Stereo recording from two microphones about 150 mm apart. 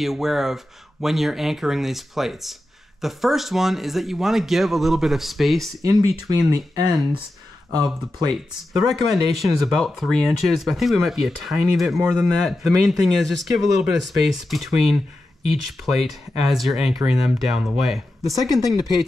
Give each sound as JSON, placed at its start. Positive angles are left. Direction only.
{"t": 0.0, "sound": "speech", "side_deg": 0}
{"t": 5.8, "sound": "speech", "side_deg": -25}
{"t": 8.7, "sound": "speech", "side_deg": 0}